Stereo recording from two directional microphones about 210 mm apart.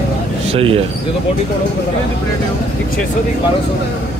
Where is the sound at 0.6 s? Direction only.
25° right (ahead or behind).